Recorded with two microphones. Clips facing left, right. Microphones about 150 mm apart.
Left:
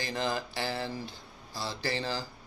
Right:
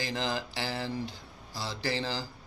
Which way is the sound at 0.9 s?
15° right (ahead or behind).